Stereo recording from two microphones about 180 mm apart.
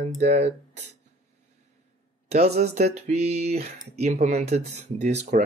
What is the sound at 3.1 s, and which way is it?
Speech, 40° right (ahead or behind).